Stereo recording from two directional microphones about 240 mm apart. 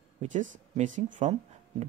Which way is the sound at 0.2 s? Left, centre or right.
Right.